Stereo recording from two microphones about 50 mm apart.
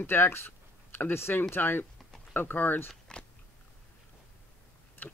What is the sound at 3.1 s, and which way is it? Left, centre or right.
Biting, centre.